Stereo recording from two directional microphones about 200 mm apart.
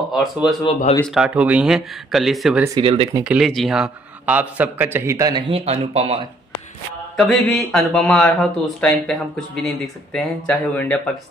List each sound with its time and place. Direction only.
0.1 s speech: centre (ahead or behind)
2.8 s speech: 30° right (ahead or behind)
3.2 s a man's voice: 5° right (ahead or behind); by 6.2 s 30° right (ahead or behind)
7.2 s speech: centre (ahead or behind)